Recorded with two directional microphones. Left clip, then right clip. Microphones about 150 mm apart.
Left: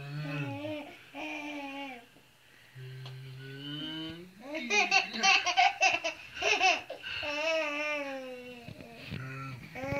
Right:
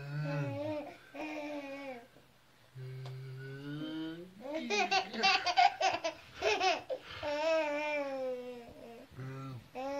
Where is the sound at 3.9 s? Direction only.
10° right (ahead or behind).